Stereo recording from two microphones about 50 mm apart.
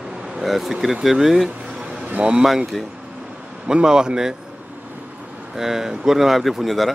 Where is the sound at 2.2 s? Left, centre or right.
Right.